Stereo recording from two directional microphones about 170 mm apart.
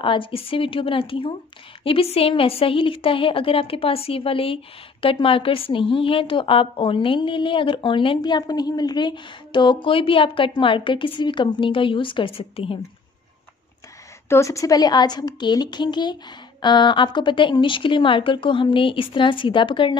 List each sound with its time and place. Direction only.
0.0 s a woman's voice: 30° left (ahead or behind)
14.3 s a woman's voice: 15° left (ahead or behind)